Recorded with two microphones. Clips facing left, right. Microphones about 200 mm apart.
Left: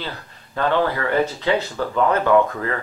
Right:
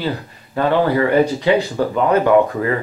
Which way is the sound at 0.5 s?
15° right (ahead or behind).